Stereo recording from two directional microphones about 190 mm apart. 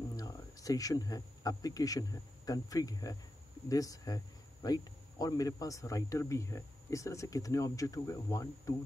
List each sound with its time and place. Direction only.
0.1 s speech: 20° left (ahead or behind)